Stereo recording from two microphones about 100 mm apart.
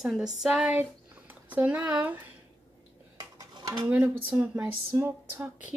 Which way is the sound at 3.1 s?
40° right (ahead or behind).